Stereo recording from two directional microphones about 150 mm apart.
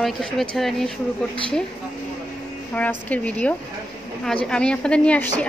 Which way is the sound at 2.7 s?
10° left (ahead or behind).